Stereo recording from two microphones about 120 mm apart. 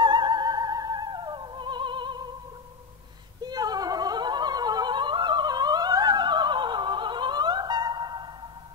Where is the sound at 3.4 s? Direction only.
35° right (ahead or behind).